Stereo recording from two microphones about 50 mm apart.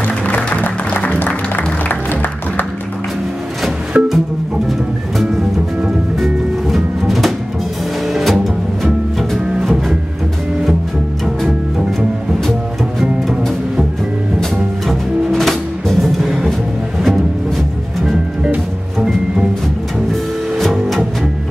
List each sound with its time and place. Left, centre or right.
0.4 s music: left
3.9 s music: right
6.1 s music: centre
14.9 s music: centre
20.7 s music: centre